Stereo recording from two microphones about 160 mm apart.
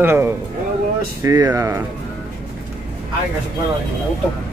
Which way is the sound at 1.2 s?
20° right (ahead or behind).